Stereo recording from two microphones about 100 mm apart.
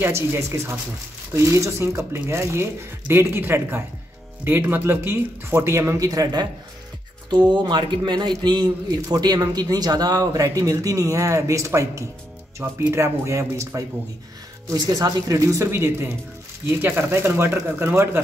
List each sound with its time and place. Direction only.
0.0 s speech: 25° right (ahead or behind)
7.2 s a man's voice: 50° right (ahead or behind); by 12.0 s 30° right (ahead or behind)
12.6 s speech: 15° right (ahead or behind)
12.9 s speech: 25° right (ahead or behind)
14.7 s a man's voice: 40° right (ahead or behind); by 18.2 s 25° right (ahead or behind)